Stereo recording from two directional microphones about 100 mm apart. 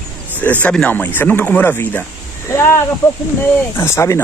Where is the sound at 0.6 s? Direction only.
15° left (ahead or behind); by 4.2 s 30° left (ahead or behind).